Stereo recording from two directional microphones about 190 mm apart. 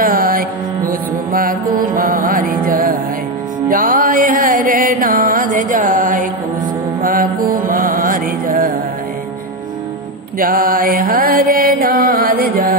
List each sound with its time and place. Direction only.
0.0 s music: 50° right (ahead or behind)
7.0 s mantra: 50° right (ahead or behind)
10.4 s mantra: 50° right (ahead or behind)